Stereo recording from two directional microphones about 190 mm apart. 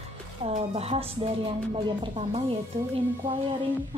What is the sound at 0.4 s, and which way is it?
A woman's voice, 35° right (ahead or behind).